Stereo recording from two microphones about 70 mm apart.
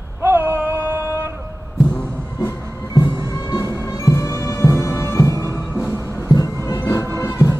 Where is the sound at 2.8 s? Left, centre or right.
Left.